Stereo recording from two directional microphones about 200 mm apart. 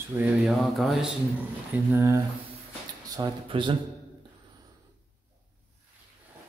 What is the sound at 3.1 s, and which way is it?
Speech, 25° right (ahead or behind).